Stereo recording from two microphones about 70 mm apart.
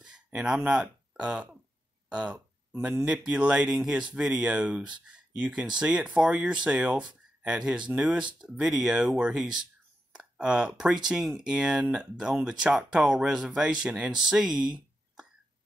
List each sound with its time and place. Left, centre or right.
0.0 s speech: centre